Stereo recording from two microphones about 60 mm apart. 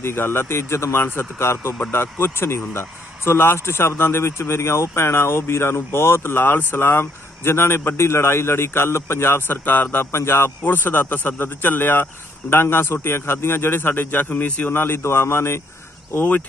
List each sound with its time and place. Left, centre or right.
0.0 s speech: left
10.1 s a man's voice: left
14.8 s speech: left